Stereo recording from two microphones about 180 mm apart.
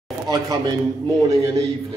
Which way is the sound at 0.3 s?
20° right (ahead or behind).